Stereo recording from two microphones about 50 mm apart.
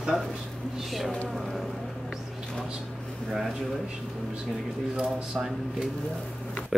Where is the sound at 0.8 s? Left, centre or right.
Centre.